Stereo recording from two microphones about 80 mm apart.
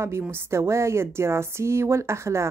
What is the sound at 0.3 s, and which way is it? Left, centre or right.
Speech, right.